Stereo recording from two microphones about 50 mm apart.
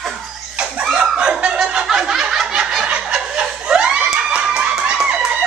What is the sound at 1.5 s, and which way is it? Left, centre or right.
Snicker, centre.